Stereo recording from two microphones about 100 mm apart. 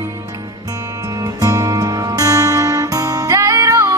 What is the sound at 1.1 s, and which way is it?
Music, 40° right (ahead or behind).